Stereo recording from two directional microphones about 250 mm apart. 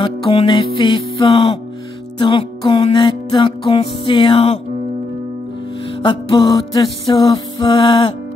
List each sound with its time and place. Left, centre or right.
0.0 s music: left
6.0 s music: centre